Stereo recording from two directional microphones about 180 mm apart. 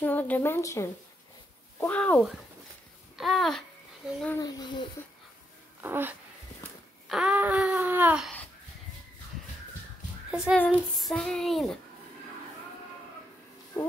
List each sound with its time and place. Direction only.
0.0 s a woman's voice: 10° left (ahead or behind)
3.2 s child singing: centre (ahead or behind)
4.4 s speech: 20° left (ahead or behind)
5.8 s a sound: 10° right (ahead or behind)
10.3 s child singing: 5° right (ahead or behind)